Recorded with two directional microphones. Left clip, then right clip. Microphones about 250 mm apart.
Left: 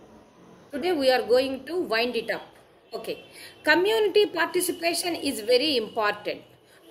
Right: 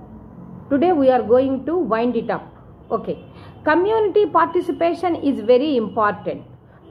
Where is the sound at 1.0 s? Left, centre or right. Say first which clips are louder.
Right 3 dB; left.